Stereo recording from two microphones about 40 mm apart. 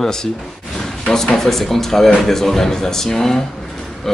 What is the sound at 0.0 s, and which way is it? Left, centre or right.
Speech, centre.